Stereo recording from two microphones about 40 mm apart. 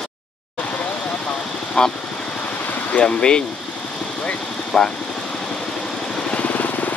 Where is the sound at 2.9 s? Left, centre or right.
Left.